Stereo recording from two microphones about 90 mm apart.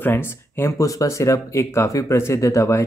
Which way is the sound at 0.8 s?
35° left (ahead or behind).